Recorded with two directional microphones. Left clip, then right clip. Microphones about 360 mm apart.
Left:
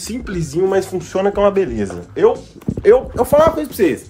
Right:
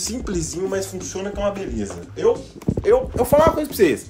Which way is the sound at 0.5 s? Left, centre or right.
Centre.